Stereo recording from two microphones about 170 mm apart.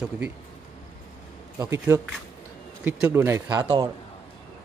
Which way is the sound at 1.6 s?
15° right (ahead or behind).